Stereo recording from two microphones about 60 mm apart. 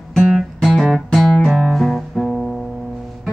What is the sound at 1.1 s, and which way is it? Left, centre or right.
Music, centre.